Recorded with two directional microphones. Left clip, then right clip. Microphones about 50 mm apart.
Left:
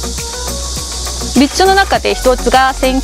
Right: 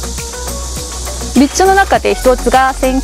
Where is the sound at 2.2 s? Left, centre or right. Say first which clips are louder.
Left 1 dB; centre.